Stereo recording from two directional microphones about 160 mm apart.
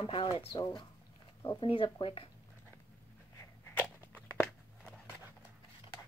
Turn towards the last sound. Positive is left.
turn(degrees=10)  # may be behind; listen again after turning